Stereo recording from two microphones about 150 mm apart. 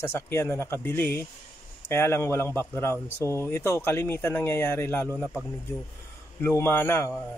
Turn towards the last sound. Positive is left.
turn(degrees=15)  # may be behind; listen again after turning